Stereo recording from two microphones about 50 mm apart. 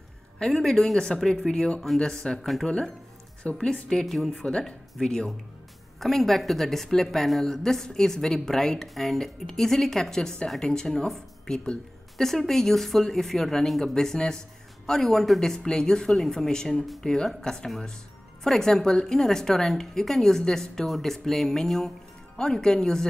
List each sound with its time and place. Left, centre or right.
0.4 s speech: centre
4.0 s speech: centre
4.3 s speech: centre
5.9 s speech: centre